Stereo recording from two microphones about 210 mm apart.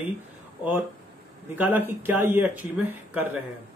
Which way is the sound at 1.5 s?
10° right (ahead or behind).